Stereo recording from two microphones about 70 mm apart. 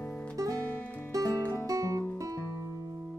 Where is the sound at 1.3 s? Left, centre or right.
Left.